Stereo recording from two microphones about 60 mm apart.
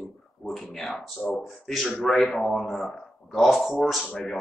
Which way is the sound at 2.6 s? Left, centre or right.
Centre.